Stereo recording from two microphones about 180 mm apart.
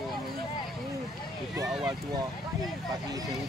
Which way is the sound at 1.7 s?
5° right (ahead or behind).